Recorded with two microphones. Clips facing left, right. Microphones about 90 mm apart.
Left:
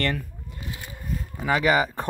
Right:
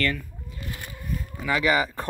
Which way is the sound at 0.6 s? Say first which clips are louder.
Even; 55° right (ahead or behind).